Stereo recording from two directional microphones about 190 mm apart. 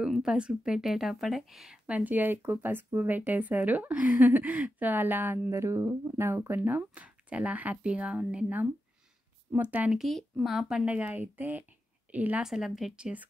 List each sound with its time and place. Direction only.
0.0 s a woman's voice: 5° right (ahead or behind)